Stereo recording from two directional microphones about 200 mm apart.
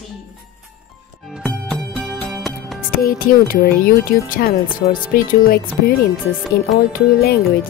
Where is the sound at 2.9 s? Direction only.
45° left (ahead or behind).